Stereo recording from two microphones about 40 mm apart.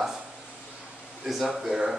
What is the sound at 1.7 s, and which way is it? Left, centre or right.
Speech, centre.